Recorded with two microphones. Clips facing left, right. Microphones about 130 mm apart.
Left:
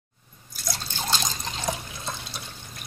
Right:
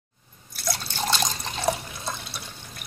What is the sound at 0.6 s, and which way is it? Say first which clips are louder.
Drip: right 4 dB; 70° right (ahead or behind).